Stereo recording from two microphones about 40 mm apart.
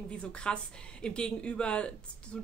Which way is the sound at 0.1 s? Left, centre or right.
Left.